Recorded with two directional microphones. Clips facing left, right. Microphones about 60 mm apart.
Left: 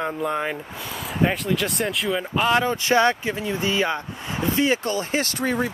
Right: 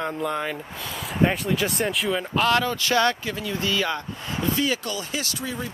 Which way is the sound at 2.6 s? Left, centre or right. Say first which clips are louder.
Left 3 dB; left.